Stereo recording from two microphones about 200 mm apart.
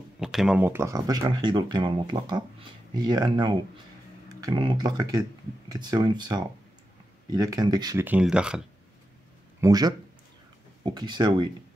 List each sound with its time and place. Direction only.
0.2 s speech: centre (ahead or behind)
9.6 s speech: 20° right (ahead or behind)